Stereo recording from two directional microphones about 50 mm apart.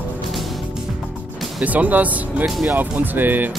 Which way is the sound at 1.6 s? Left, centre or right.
Right.